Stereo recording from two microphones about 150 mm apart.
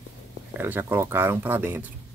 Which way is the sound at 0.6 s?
15° right (ahead or behind).